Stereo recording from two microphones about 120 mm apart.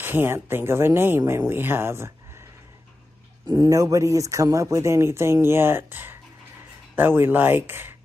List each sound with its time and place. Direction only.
0.0 s speech: 15° right (ahead or behind)
3.4 s speech: 35° right (ahead or behind); by 7.9 s 15° right (ahead or behind)